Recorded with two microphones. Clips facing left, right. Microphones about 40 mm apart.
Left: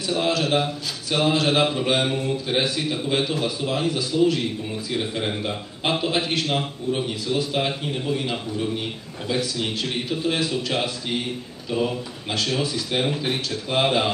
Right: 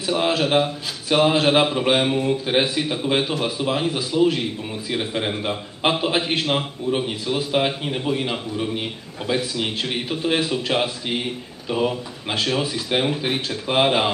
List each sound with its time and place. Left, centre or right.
0.0 s a man's voice: centre